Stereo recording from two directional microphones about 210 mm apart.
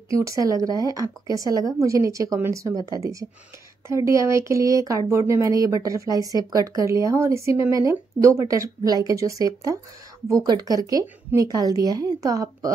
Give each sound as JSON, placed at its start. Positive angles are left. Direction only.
{"t": 0.1, "sound": "speech", "side_deg": -15}